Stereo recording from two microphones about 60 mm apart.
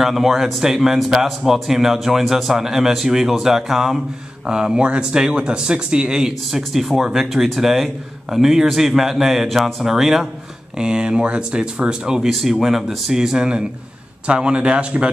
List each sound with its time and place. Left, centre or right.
0.0 s speech: centre
12.3 s a man's voice: centre